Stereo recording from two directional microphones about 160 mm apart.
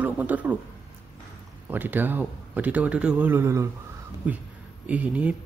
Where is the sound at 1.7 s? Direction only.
10° right (ahead or behind).